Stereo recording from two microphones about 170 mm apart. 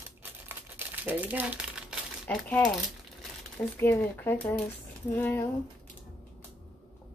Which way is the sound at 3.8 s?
10° left (ahead or behind).